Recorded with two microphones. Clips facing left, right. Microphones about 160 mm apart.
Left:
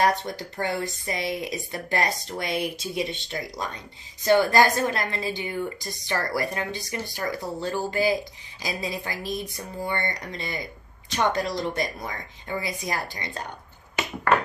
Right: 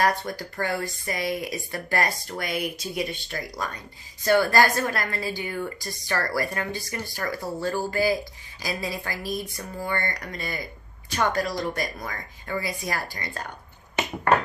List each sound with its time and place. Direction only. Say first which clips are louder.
0.0 s a woman's voice: left 1 dB; 20° left (ahead or behind)